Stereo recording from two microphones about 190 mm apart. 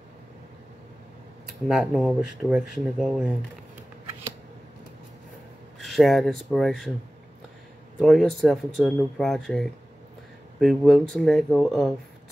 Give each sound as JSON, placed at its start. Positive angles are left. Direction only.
{"t": 1.7, "sound": "speech", "side_deg": -5}
{"t": 5.8, "sound": "speech", "side_deg": 0}
{"t": 8.0, "sound": "speech", "side_deg": 0}